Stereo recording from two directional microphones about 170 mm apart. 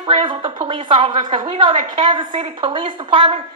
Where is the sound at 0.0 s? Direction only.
30° right (ahead or behind).